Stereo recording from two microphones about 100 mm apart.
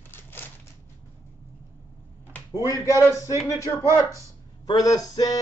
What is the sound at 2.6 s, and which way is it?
Speech, 35° left (ahead or behind).